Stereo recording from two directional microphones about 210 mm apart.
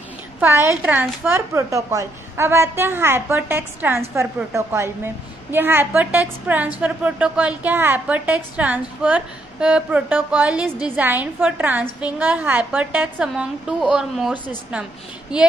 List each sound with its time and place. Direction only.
0.4 s a woman's voice: 10° right (ahead or behind)